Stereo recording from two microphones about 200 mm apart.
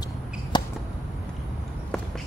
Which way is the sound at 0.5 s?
20° left (ahead or behind).